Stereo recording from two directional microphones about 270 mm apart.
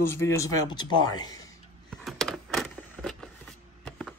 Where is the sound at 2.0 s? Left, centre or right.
Centre.